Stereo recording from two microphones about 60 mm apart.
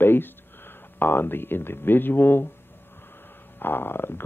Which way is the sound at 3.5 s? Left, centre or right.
Left.